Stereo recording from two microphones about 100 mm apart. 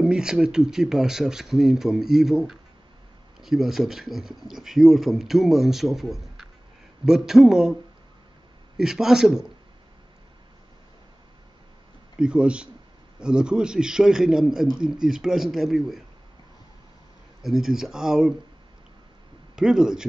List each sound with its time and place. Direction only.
0.0 s speech: 5° right (ahead or behind)
12.2 s a man's voice: 10° right (ahead or behind)
17.4 s speech: 5° right (ahead or behind)
19.5 s a man's voice: 5° right (ahead or behind)